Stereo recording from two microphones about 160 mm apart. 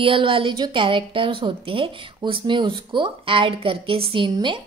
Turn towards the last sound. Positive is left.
turn(degrees=-30)  # may be behind; listen again after turning